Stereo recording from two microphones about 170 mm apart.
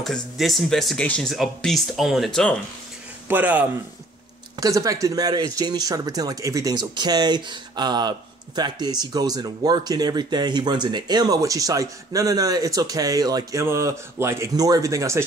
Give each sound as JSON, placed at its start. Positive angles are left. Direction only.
{"t": 0.0, "sound": "speech", "side_deg": 0}
{"t": 3.3, "sound": "speech", "side_deg": -10}